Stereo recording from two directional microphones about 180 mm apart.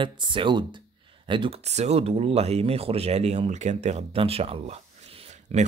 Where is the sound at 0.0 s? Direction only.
30° right (ahead or behind).